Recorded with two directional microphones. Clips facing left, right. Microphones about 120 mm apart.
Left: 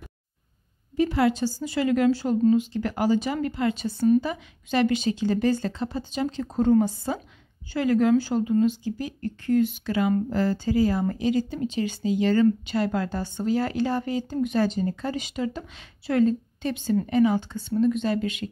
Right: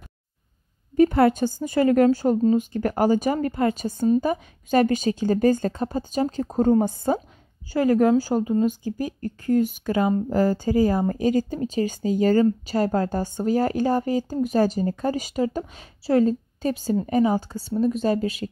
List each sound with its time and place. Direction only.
0.9 s a woman's voice: 50° right (ahead or behind); by 18.5 s 35° right (ahead or behind)